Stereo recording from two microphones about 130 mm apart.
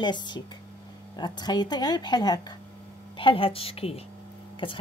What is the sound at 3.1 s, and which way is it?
A woman's voice, 45° left (ahead or behind).